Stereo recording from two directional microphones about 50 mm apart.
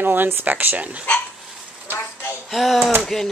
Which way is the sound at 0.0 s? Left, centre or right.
Right.